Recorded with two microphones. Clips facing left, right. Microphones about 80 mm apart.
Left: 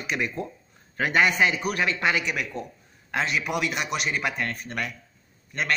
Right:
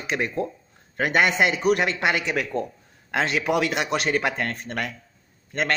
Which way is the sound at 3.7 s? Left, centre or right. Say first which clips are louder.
Right 4 dB; right.